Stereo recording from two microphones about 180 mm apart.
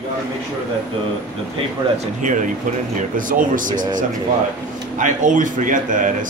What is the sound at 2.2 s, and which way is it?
A man's voice, 45° right (ahead or behind).